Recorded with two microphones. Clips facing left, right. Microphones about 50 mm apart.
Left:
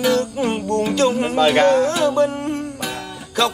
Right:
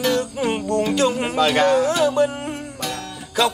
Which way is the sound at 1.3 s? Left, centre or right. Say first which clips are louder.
Left 4 dB; centre.